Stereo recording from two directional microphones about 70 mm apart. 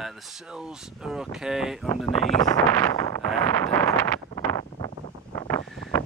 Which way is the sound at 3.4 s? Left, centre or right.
Left.